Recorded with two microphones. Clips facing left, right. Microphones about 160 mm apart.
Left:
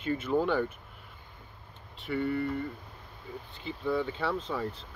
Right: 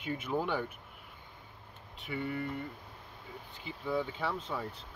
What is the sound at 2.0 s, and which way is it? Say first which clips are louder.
Speech: left 6 dB; 10° right (ahead or behind).